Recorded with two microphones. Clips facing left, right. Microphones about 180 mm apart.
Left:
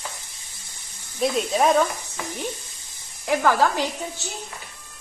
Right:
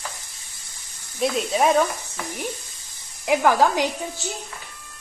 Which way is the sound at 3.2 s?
15° right (ahead or behind).